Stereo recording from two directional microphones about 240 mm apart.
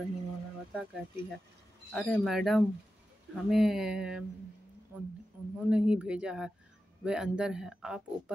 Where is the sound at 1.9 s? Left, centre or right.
Centre.